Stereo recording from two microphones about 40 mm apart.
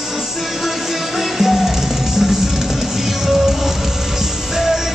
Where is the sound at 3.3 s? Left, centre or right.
Centre.